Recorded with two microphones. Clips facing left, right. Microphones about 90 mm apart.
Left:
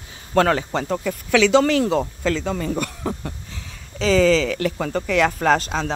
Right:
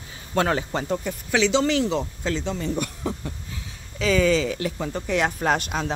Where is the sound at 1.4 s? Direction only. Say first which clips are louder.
Left 4 dB; 50° left (ahead or behind).